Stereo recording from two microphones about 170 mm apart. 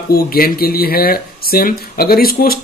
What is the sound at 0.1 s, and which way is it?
Speech, 60° left (ahead or behind).